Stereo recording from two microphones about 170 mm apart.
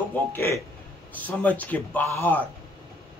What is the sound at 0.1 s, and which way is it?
Speech, 15° left (ahead or behind).